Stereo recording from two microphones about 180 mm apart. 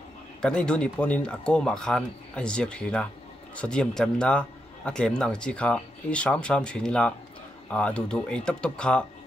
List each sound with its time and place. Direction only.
0.4 s a man's voice: 5° left (ahead or behind)